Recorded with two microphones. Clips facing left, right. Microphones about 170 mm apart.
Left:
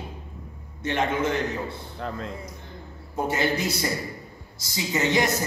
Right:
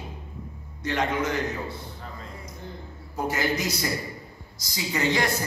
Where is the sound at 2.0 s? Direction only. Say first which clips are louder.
Left 8 dB; 85° left.